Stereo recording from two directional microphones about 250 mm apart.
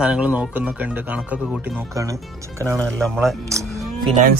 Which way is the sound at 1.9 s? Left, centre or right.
Centre.